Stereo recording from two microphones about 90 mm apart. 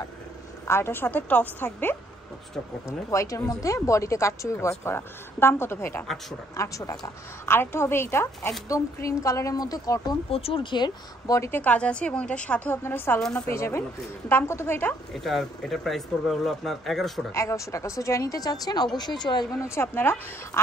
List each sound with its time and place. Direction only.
0.7 s a woman's voice: 30° left (ahead or behind)
3.1 s speech: 35° left (ahead or behind)
7.4 s speech: 25° left (ahead or behind); by 10.1 s 45° left (ahead or behind)
10.3 s speech: 85° left; by 10.9 s 60° left (ahead or behind)
11.2 s speech: 35° left (ahead or behind)
11.5 s a woman's voice: 15° left (ahead or behind)
12.7 s a woman's voice: 25° left (ahead or behind)
15.1 s speech: centre (ahead or behind)
17.3 s a woman's voice: 35° left (ahead or behind); by 19.4 s 55° left (ahead or behind)
19.6 s a woman's voice: 30° left (ahead or behind)